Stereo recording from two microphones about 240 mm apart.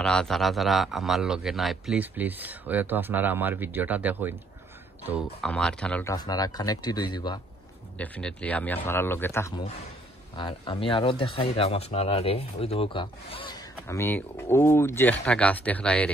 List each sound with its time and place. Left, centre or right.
0.0 s a man's voice: centre
6.1 s a man's voice: centre
8.0 s a man's voice: centre